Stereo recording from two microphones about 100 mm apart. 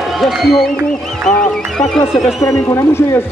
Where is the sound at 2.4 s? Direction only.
30° left (ahead or behind).